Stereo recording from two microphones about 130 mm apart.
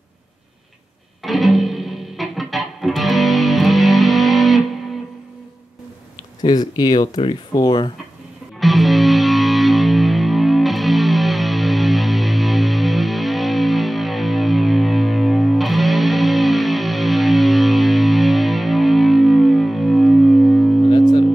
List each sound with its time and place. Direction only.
1.2 s music: centre (ahead or behind)
6.4 s speech: 30° left (ahead or behind)
8.5 s music: centre (ahead or behind)
20.9 s music: 35° left (ahead or behind)